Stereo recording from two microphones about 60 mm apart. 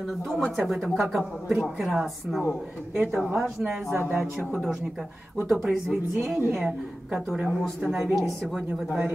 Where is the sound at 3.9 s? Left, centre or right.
Right.